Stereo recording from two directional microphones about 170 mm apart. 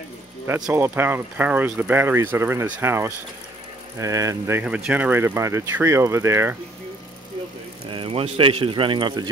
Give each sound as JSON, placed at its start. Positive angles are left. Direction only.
{"t": 0.7, "sound": "speech", "side_deg": -15}
{"t": 7.9, "sound": "speech", "side_deg": -35}